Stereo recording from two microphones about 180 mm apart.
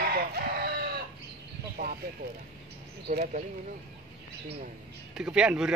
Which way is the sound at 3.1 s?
55° right (ahead or behind).